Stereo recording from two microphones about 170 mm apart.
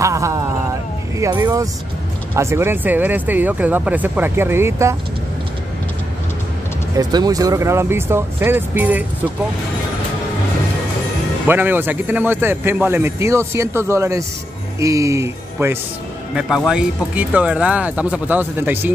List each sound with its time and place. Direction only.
0.0 s speech: 20° right (ahead or behind)
7.0 s speech: 25° right (ahead or behind)
11.4 s speech: 10° right (ahead or behind)
16.3 s speech: 5° right (ahead or behind)